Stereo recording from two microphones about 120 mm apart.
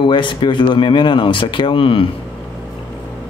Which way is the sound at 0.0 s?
45° left (ahead or behind).